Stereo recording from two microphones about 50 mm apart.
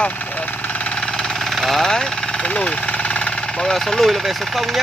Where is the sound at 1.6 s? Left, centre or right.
Centre.